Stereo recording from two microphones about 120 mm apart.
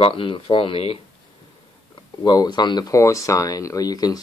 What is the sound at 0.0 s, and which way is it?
Speech, 45° left (ahead or behind).